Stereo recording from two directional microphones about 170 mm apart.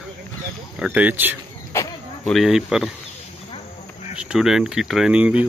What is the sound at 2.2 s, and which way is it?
Speech, centre (ahead or behind).